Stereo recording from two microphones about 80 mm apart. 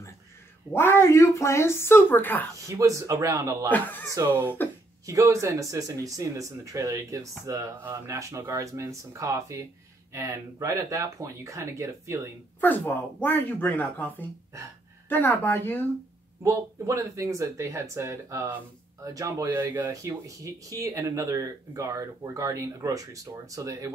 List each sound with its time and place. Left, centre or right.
0.7 s speech: left
2.7 s speech: right
3.6 s speech: left
4.6 s a sound: left
5.0 s speech: right
12.5 s speech: left
16.4 s speech: right
19.4 s speech: right
19.9 s speech: right